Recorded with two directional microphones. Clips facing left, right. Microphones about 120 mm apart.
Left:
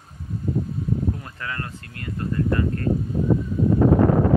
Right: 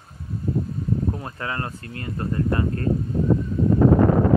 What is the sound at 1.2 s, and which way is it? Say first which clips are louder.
Speech: right 3 dB; 30° right (ahead or behind).